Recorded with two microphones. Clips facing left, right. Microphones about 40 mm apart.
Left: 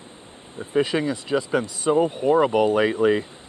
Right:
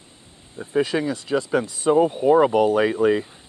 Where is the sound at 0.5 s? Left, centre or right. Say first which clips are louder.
Even; centre.